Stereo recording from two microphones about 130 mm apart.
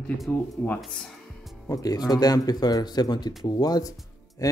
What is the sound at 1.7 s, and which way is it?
Speech, 30° left (ahead or behind).